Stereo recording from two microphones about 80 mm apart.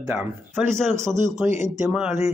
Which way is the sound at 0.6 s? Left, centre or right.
Right.